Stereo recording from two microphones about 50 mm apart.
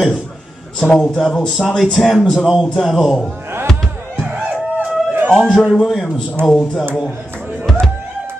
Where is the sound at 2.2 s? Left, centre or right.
Centre.